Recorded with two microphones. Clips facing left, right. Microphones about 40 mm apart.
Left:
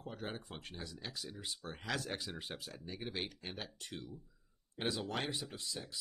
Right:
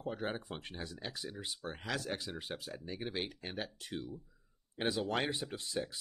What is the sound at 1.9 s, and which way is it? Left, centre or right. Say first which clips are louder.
Speech: right 1 dB; centre.